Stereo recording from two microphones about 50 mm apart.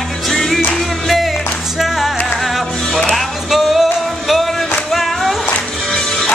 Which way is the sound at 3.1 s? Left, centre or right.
Centre.